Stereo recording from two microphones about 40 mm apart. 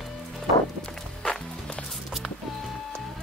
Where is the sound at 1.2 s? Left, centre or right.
Centre.